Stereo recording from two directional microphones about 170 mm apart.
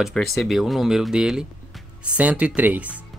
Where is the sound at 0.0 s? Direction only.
Centre (ahead or behind).